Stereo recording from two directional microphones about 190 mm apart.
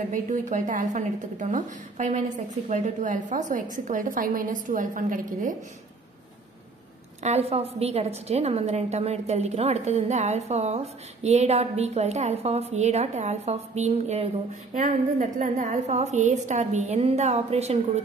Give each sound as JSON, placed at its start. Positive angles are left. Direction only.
{"t": 0.1, "sound": "a woman's voice", "side_deg": -40}
{"t": 7.2, "sound": "a woman's voice", "side_deg": -30}